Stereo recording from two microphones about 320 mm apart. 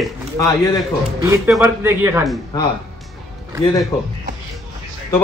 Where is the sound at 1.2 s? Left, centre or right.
Centre.